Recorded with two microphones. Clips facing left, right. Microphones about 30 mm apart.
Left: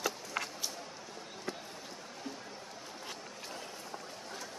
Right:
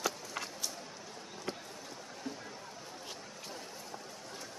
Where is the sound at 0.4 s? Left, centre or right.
Centre.